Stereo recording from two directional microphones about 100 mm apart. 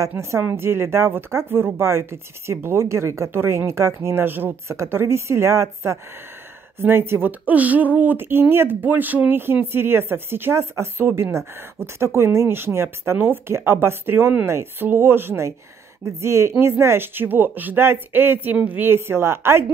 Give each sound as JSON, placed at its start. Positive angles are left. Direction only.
{"t": 0.2, "sound": "speech", "side_deg": -25}